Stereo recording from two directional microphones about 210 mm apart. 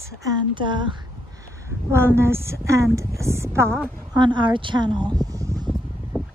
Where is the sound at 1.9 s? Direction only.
10° right (ahead or behind).